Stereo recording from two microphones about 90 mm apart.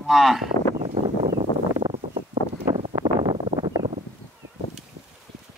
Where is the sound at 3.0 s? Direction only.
50° right (ahead or behind).